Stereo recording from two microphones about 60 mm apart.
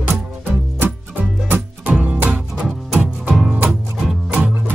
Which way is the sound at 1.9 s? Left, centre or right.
Right.